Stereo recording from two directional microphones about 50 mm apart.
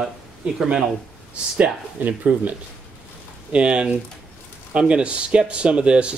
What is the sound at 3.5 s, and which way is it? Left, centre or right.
Speech, right.